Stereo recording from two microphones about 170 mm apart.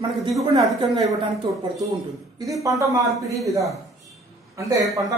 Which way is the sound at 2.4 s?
20° right (ahead or behind).